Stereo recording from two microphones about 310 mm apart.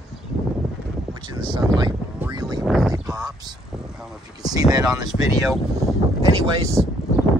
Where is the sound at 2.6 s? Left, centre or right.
Centre.